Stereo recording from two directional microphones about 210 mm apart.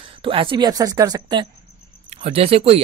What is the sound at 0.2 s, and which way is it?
A woman's voice, 25° right (ahead or behind).